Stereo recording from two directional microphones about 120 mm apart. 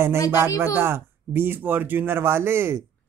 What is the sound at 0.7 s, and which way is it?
Speech, 20° right (ahead or behind).